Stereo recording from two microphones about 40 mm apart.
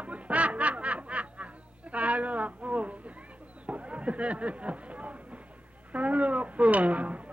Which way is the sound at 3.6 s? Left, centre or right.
Right.